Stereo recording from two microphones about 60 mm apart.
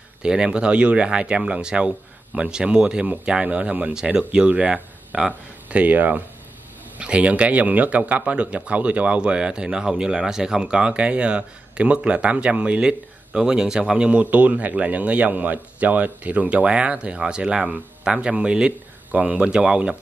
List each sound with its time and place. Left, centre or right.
0.2 s speech: centre
14.2 s speech: right